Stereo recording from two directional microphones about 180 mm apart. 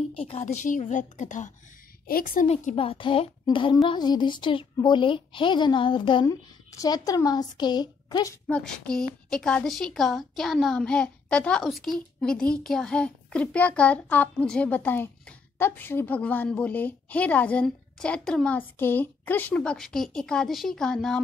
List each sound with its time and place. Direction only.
0.1 s a woman's voice: 30° left (ahead or behind); by 2.4 s 55° left (ahead or behind)
2.4 s a woman's voice: 35° left (ahead or behind)
8.5 s a woman's voice: 5° left (ahead or behind)